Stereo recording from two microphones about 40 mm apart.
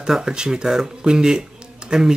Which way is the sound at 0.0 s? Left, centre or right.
Centre.